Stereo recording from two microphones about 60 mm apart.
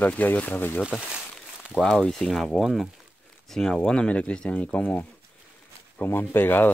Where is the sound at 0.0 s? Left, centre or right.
Left.